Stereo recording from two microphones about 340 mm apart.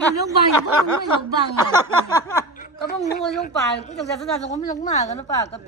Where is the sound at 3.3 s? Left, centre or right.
Left.